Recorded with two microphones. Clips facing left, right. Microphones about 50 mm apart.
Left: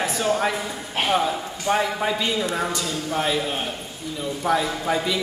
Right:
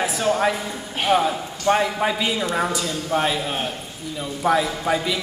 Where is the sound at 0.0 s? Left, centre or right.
Centre.